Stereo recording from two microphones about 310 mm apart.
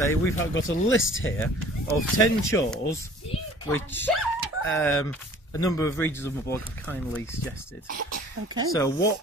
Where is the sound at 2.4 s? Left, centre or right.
Centre.